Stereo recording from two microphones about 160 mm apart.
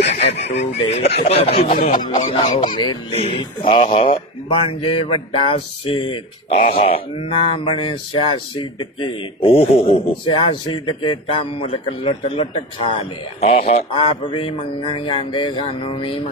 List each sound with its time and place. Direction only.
0.0 s speech: 40° left (ahead or behind)
1.7 s speech: 60° left (ahead or behind)
2.6 s speech: 30° left (ahead or behind)
6.5 s speech: 65° left (ahead or behind)
7.2 s speech: 35° left (ahead or behind)